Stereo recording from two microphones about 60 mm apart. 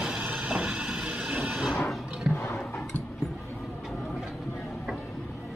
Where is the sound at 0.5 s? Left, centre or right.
Right.